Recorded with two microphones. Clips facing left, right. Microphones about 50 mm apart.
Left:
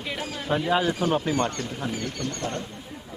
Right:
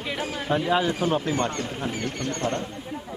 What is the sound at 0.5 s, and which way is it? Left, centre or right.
Speech, centre.